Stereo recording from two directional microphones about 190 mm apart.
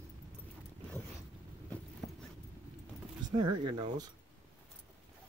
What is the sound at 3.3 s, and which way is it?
Speech, 25° right (ahead or behind).